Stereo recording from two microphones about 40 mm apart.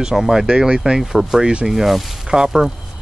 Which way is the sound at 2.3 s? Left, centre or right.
Centre.